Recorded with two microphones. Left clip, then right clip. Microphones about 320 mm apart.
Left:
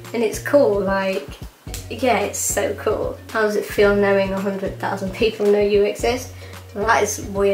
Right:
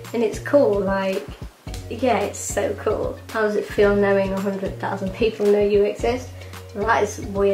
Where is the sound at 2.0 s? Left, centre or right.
Centre.